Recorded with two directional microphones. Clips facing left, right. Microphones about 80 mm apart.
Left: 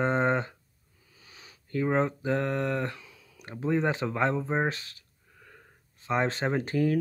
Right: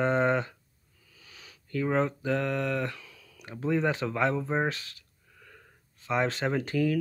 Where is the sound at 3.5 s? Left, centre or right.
Left.